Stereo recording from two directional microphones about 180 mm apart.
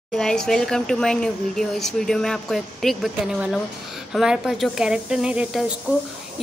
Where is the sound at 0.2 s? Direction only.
5° left (ahead or behind).